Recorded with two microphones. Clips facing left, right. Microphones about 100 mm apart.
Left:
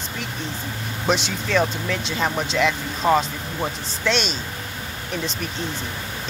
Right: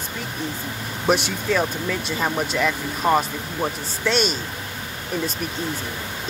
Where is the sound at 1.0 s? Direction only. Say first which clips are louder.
Right 2 dB; 10° right (ahead or behind).